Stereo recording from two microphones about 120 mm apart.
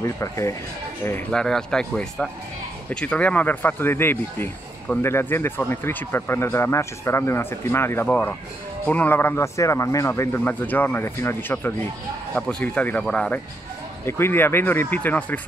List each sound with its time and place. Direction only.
0.0 s speech: 25° left (ahead or behind)
1.3 s speech: 5° left (ahead or behind)
14.0 s speech: 20° left (ahead or behind)